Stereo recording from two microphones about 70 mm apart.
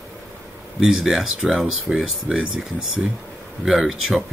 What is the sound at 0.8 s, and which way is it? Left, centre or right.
Speech, centre.